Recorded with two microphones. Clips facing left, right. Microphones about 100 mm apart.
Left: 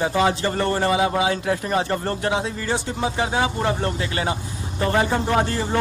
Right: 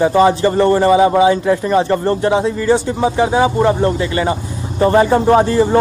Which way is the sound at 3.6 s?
25° right (ahead or behind).